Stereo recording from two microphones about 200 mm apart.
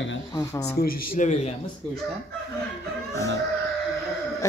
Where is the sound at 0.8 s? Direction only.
35° left (ahead or behind).